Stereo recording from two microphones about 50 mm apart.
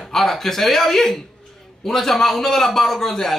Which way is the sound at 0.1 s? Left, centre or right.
Centre.